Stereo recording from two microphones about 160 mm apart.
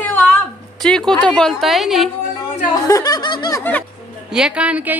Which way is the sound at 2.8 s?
20° left (ahead or behind).